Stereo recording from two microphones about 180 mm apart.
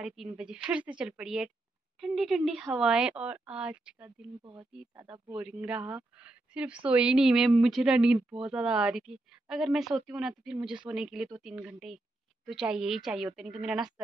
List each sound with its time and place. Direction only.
0.0 s a woman's voice: 5° right (ahead or behind)
4.4 s speech: 25° right (ahead or behind)
5.4 s a woman's voice: 5° right (ahead or behind)